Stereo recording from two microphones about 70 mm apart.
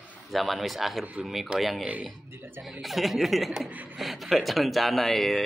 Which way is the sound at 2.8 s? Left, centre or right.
Centre.